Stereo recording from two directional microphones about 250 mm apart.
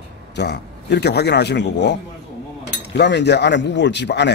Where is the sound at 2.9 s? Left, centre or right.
Left.